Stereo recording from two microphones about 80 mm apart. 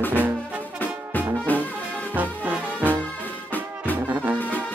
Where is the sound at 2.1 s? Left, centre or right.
Centre.